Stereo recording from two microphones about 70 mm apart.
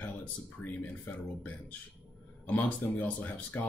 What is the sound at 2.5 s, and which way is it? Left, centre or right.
Speech, left.